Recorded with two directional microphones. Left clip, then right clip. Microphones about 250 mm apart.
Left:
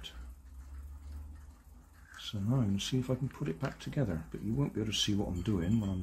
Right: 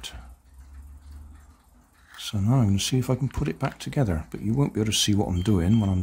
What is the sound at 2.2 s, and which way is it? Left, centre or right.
Speech, right.